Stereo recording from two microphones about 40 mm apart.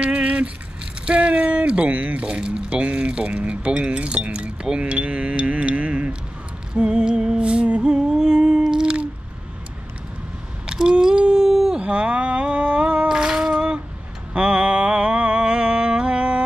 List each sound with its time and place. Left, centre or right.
0.0 s keys jangling: right
1.0 s speech: right
6.7 s music: right
10.7 s a sound: centre
11.8 s a sound: right
14.3 s mantra: right